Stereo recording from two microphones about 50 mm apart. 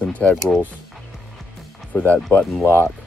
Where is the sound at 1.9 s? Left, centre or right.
Left.